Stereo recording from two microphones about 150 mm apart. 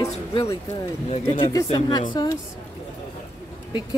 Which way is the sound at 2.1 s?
30° left (ahead or behind).